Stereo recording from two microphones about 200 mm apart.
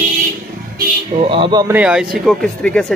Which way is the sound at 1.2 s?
25° right (ahead or behind).